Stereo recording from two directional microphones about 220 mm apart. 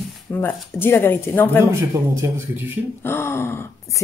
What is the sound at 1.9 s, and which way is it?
Speech, 10° right (ahead or behind).